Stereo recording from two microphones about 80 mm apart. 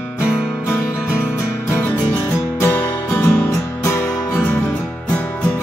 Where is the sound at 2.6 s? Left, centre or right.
Left.